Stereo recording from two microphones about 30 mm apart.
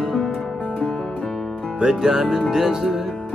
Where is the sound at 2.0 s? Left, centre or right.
Right.